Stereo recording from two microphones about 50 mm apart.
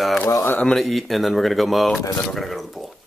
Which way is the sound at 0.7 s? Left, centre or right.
Centre.